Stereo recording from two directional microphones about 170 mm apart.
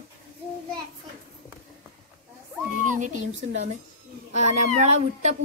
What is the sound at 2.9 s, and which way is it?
Speech, 45° right (ahead or behind).